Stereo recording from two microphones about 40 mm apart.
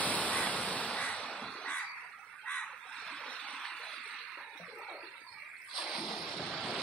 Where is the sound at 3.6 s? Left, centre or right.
Centre.